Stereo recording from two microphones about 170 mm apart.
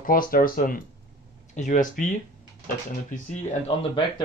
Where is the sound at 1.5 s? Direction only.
50° left (ahead or behind).